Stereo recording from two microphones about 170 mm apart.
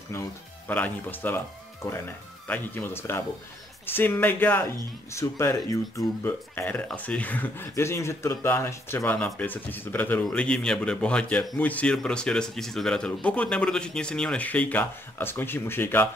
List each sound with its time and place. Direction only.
0.1 s speech: 10° left (ahead or behind)